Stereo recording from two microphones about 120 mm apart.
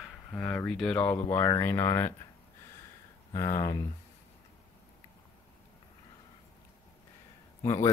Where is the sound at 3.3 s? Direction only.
25° left (ahead or behind).